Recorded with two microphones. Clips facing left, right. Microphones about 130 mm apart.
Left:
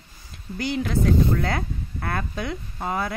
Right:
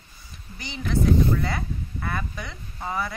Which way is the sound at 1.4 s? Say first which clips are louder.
Left 2 dB; 55° left (ahead or behind).